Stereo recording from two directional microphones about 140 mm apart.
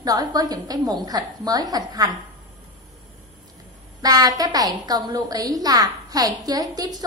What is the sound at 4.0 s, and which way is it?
A woman's voice, 25° right (ahead or behind).